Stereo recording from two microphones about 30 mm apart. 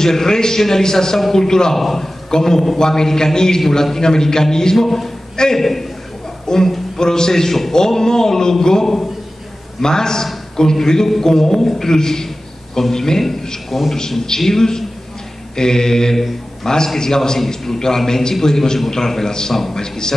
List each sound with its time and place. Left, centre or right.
0.0 s a man's voice: centre
1.8 s a man's voice: centre
2.3 s a man's voice: centre
4.7 s a man's voice: centre
5.3 s a man's voice: left
5.6 s a man's voice: centre
6.4 s a man's voice: centre
13.7 s a man's voice: centre; by 20.2 s left